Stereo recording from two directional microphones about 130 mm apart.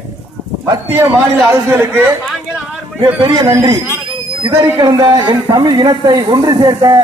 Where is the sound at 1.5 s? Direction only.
20° right (ahead or behind).